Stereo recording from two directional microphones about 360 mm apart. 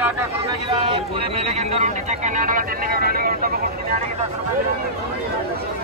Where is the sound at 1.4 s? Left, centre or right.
Centre.